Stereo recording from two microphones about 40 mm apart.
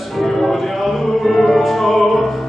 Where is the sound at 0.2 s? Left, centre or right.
Centre.